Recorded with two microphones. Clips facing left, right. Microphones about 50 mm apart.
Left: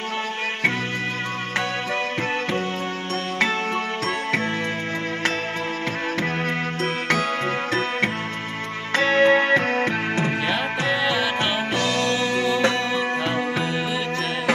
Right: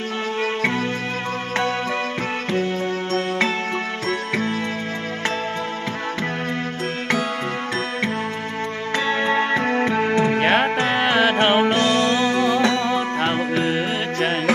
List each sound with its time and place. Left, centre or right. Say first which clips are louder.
9.1 s music: left 4 dB; centre
10.4 s music: right 5 dB; right